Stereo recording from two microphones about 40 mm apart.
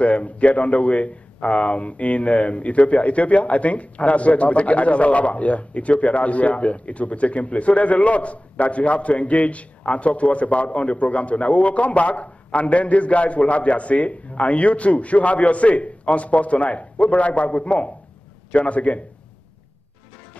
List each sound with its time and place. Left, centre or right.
0.0 s a man's voice: left